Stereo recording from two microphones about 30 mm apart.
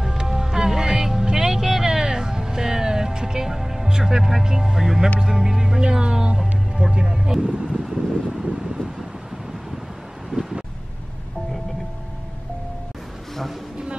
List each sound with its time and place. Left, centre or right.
0.2 s music: centre
3.9 s speech: centre
5.8 s speech: right
7.7 s speech: centre